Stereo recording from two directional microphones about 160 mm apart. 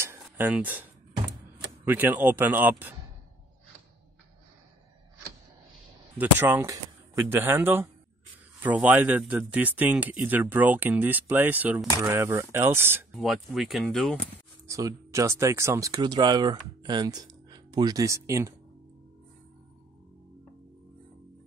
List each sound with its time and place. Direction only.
0.0 s a sound: 15° right (ahead or behind)
1.9 s speech: 10° right (ahead or behind)
6.1 s speech: 10° right (ahead or behind)
13.1 s speech: centre (ahead or behind)
14.7 s speech: 20° right (ahead or behind)